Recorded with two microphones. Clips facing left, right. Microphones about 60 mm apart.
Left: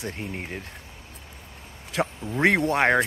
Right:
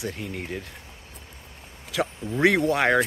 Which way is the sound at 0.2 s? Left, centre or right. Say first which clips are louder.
Right 1 dB; left.